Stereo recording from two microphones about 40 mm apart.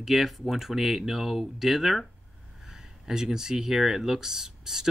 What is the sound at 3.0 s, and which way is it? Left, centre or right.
Speech, centre.